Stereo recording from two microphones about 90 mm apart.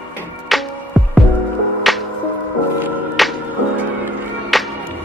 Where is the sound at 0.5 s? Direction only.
Centre (ahead or behind).